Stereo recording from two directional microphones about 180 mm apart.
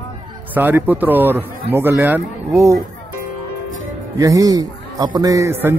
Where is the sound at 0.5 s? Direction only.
10° right (ahead or behind).